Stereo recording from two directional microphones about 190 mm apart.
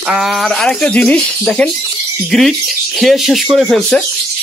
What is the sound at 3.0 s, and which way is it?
Speech, centre (ahead or behind).